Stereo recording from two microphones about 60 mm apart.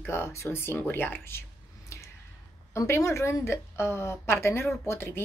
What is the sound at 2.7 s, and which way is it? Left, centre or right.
Speech, left.